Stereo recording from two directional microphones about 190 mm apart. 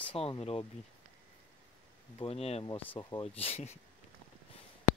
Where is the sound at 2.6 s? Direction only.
20° left (ahead or behind).